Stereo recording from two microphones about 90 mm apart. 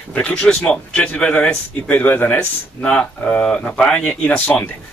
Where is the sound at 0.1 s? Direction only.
15° left (ahead or behind).